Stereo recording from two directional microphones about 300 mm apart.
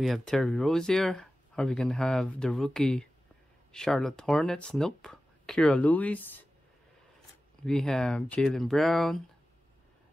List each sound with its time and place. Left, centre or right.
0.0 s speech: centre
7.6 s speech: centre